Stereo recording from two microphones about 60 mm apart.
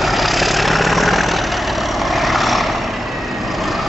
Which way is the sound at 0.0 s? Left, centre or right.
Centre.